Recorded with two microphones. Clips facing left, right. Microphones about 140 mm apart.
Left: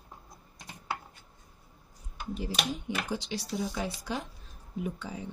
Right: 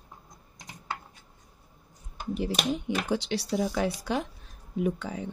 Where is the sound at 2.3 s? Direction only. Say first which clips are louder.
Right 5 dB; 70° right (ahead or behind).